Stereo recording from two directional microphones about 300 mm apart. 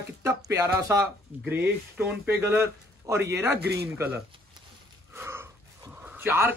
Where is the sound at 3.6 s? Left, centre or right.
Right.